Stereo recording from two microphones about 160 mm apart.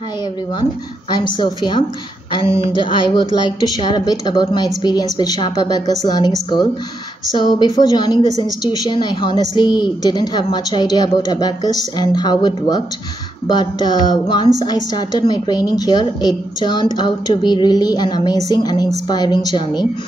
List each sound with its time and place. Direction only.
1.1 s a woman's voice: 25° left (ahead or behind)
2.6 s a sound: 30° left (ahead or behind)
3.4 s a woman's voice: 25° left (ahead or behind)
7.3 s a woman's voice: 30° left (ahead or behind)
8.2 s a woman's voice: 25° right (ahead or behind)
8.6 s a woman's voice: 30° left (ahead or behind)